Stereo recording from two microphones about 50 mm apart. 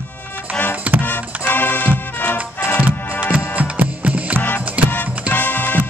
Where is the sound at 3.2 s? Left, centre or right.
Right.